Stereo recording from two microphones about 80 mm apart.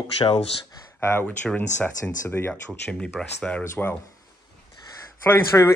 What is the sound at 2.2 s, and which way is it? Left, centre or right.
Speech, left.